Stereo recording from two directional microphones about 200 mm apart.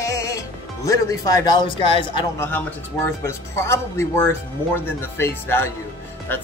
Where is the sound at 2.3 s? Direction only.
10° left (ahead or behind).